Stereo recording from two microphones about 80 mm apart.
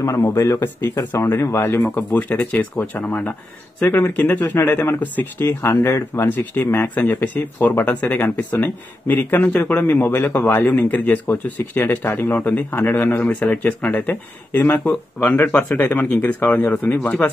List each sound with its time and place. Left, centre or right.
0.0 s speech: left; by 17.3 s centre